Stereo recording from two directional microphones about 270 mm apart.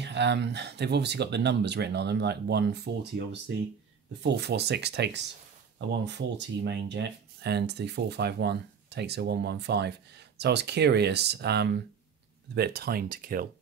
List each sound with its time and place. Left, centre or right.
0.0 s speech: right
4.2 s speech: right